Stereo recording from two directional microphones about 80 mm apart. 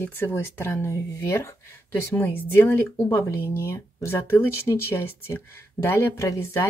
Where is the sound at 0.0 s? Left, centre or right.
Left.